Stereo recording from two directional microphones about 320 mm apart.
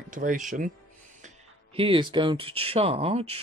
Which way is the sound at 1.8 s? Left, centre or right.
Centre.